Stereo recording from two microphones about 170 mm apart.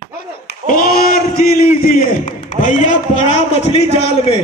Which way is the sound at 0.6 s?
55° left (ahead or behind).